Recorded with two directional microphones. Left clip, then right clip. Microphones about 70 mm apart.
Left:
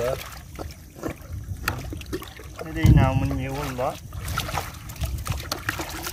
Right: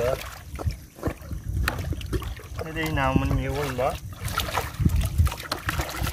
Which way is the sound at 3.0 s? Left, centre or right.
Right.